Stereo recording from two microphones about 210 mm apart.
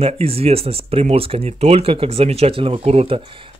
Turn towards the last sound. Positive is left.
turn(degrees=-30)  # may be behind; listen again after turning